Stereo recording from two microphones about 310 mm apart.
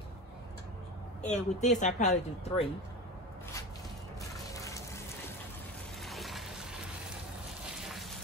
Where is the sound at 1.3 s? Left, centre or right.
Left.